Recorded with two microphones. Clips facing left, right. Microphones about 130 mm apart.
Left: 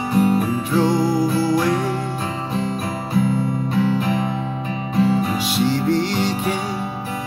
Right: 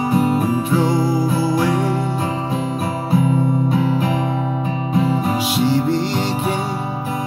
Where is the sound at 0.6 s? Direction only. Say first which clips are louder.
Even; 5° right (ahead or behind).